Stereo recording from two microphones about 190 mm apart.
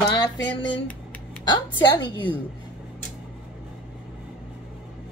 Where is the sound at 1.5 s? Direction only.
25° left (ahead or behind).